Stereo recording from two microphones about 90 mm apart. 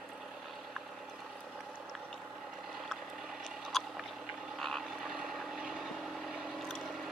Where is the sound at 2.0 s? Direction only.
Centre (ahead or behind).